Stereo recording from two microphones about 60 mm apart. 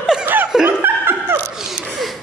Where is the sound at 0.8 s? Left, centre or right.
Right.